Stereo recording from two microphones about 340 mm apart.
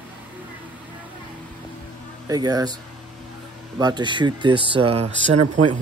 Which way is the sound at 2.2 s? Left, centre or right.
Centre.